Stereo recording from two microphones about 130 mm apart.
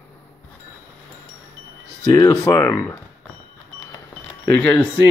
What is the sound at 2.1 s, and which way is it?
Speech, 20° left (ahead or behind).